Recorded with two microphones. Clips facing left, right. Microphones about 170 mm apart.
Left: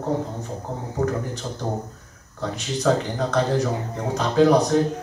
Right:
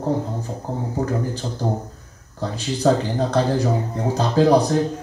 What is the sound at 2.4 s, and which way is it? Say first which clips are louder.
Speech: right 3 dB; 30° right (ahead or behind).